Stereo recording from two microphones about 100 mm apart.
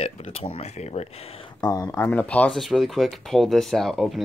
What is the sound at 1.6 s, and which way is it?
Speech, 35° left (ahead or behind).